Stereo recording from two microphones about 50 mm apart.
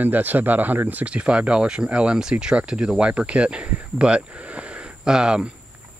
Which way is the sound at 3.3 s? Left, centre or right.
Right.